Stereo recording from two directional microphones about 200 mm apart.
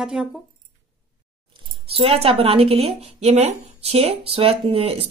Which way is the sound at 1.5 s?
30° right (ahead or behind).